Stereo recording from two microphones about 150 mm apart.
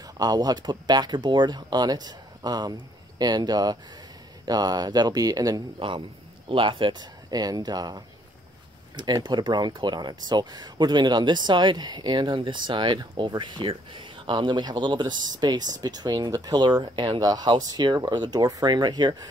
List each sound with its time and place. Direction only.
0.2 s a man's voice: 25° right (ahead or behind)